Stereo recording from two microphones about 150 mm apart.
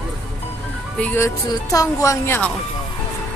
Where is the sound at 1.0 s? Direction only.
15° left (ahead or behind).